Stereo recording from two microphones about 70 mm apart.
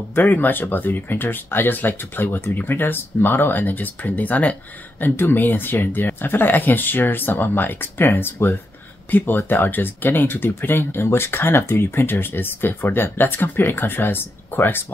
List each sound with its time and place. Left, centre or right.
0.2 s speech: left